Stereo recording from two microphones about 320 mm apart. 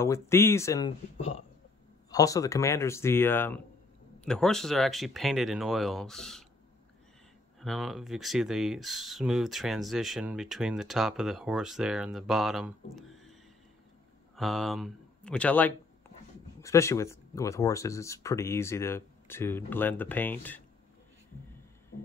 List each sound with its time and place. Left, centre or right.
0.0 s speech: centre
7.6 s speech: centre
14.3 s speech: centre